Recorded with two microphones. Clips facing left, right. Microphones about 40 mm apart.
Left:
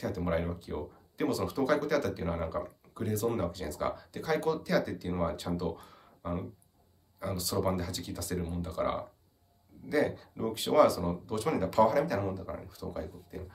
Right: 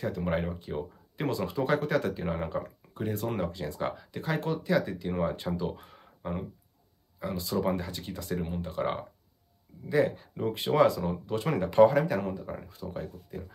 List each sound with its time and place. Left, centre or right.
0.0 s speech: right